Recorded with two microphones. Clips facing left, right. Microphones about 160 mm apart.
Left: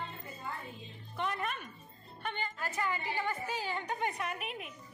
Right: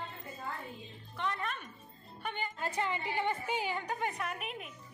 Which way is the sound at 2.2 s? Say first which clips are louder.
Even; 10° right (ahead or behind).